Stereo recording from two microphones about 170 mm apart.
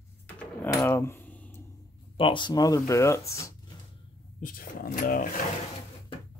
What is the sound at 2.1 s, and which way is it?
Speech, 30° left (ahead or behind).